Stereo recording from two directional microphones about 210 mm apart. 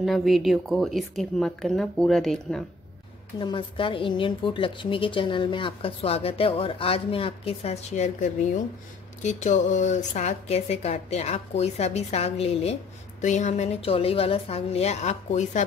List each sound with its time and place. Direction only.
0.0 s a woman's voice: centre (ahead or behind)
3.3 s a woman's voice: 25° left (ahead or behind)